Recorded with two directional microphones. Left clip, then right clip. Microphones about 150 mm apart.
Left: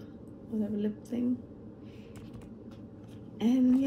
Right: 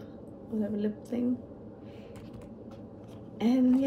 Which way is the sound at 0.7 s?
30° right (ahead or behind).